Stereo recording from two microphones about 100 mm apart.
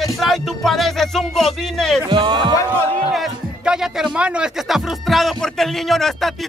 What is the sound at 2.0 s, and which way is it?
Music, 55° right (ahead or behind).